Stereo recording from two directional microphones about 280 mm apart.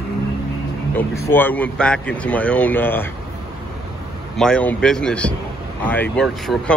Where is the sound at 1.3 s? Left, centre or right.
Centre.